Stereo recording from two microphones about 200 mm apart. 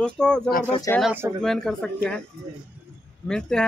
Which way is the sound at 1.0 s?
5° right (ahead or behind).